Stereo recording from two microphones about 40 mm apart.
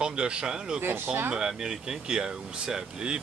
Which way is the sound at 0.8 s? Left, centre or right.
Right.